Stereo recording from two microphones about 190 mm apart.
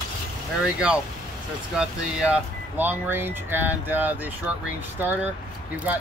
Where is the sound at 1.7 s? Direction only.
5° right (ahead or behind).